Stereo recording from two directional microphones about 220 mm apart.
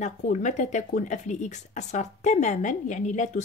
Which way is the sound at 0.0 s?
35° left (ahead or behind).